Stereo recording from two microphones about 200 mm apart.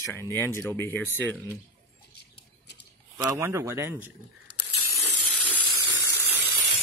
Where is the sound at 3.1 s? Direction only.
15° right (ahead or behind).